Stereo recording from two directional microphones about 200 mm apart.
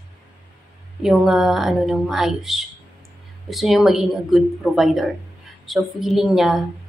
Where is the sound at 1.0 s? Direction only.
Centre (ahead or behind).